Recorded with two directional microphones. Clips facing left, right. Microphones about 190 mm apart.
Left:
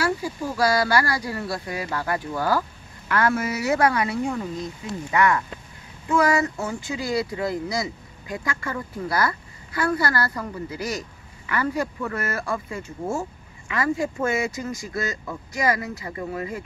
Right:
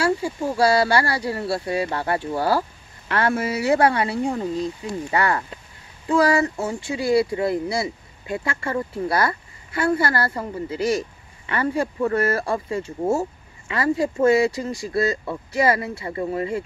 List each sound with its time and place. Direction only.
0.0 s speech: 25° right (ahead or behind)